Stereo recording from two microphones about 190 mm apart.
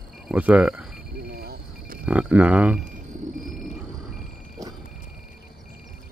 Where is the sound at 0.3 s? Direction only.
5° right (ahead or behind).